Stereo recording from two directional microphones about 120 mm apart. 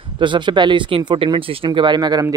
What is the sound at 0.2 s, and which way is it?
Speech, 40° right (ahead or behind).